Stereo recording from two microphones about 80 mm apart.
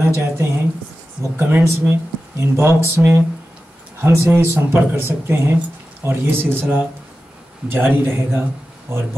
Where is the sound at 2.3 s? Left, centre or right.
Right.